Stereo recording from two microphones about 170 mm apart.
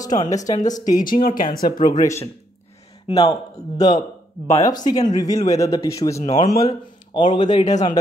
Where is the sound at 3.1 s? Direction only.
25° left (ahead or behind).